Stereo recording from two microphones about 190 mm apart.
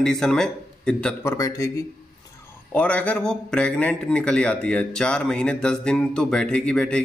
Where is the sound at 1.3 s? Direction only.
15° left (ahead or behind).